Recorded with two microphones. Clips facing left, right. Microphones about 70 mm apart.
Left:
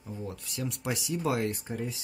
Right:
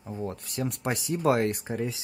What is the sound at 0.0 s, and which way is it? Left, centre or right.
Speech, right.